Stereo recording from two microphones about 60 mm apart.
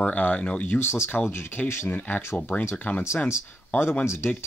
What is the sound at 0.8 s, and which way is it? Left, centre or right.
Speech, left.